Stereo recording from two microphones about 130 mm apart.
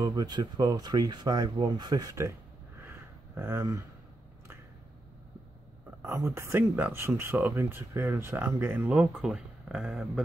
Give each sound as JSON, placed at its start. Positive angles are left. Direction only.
{"t": 0.0, "sound": "speech", "side_deg": -30}
{"t": 2.8, "sound": "a sound", "side_deg": -20}
{"t": 6.0, "sound": "speech", "side_deg": -20}